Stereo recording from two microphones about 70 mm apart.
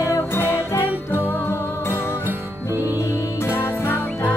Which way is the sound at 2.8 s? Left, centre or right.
Left.